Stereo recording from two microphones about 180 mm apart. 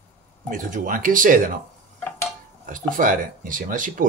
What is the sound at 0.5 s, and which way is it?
Speech, 45° right (ahead or behind).